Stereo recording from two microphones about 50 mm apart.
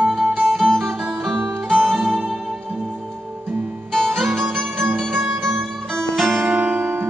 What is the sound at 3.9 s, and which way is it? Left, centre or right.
Music, centre.